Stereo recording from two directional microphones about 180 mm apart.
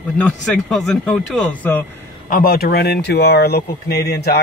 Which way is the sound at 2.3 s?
55° left (ahead or behind).